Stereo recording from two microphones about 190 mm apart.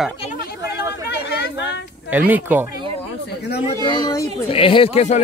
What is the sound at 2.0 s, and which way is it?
Speech, 10° right (ahead or behind).